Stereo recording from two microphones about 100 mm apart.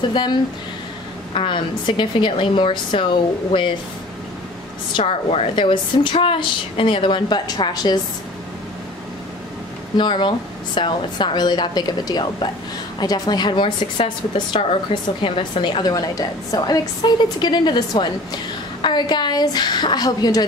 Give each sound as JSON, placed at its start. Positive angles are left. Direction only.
{"t": 0.1, "sound": "a woman's voice", "side_deg": 50}
{"t": 1.3, "sound": "a woman's voice", "side_deg": 70}
{"t": 1.9, "sound": "a woman's voice", "side_deg": 55}
{"t": 4.9, "sound": "a woman's voice", "side_deg": 90}
{"t": 5.6, "sound": "a woman's voice", "side_deg": 60}
{"t": 9.9, "sound": "a woman's voice", "side_deg": 50}
{"t": 15.8, "sound": "a woman's voice", "side_deg": 40}